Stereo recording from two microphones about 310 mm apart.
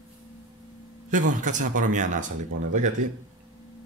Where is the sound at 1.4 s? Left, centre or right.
Right.